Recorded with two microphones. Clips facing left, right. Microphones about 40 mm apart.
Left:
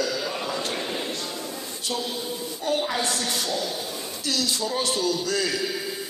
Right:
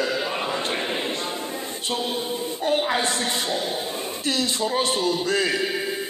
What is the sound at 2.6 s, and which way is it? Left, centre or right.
A man's voice, right.